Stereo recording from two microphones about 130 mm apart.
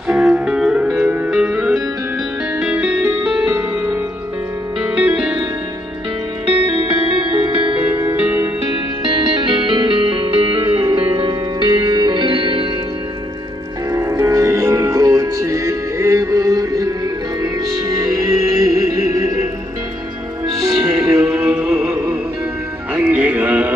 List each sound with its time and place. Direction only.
0.1 s music: 5° right (ahead or behind)
4.9 s music: 10° right (ahead or behind)
6.7 s music: 40° right (ahead or behind)
7.9 s music: 20° right (ahead or behind)
9.0 s music: 40° right (ahead or behind)
13.9 s music: 25° right (ahead or behind)
20.6 s music: 25° right (ahead or behind)
21.4 s music: 10° right (ahead or behind)
22.9 s music: 10° right (ahead or behind)